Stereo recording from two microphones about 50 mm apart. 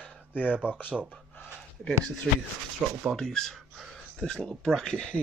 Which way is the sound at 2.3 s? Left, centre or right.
Centre.